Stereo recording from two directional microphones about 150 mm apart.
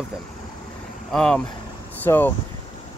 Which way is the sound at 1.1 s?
5° left (ahead or behind).